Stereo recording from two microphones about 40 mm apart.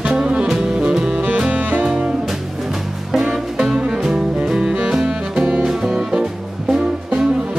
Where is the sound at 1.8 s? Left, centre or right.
Right.